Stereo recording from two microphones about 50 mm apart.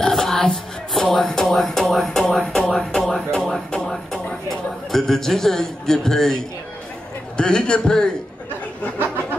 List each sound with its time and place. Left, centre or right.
0.0 s music: centre
0.9 s a sound: centre
7.3 s a man's voice: centre